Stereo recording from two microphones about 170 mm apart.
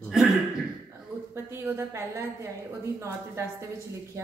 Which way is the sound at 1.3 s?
15° right (ahead or behind).